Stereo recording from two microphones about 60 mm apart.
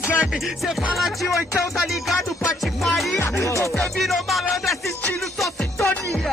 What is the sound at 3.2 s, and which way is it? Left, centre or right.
Music, left.